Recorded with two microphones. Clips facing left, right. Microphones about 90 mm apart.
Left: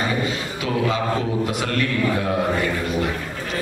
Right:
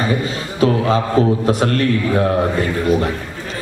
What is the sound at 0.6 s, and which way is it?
Mantra, 40° right (ahead or behind).